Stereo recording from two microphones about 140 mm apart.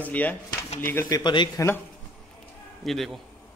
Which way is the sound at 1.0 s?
30° left (ahead or behind).